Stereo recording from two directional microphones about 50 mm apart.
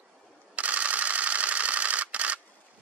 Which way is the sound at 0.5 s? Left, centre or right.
Right.